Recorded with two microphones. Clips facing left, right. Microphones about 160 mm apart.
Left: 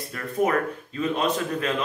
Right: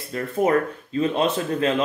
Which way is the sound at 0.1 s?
30° right (ahead or behind).